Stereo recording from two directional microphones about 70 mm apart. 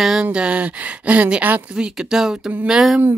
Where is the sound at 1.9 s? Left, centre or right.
Centre.